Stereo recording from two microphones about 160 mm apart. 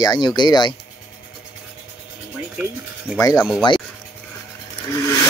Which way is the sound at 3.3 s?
Centre (ahead or behind).